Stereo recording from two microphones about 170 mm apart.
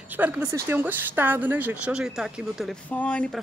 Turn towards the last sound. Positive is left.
turn(degrees=5)  # may be behind; listen again after turning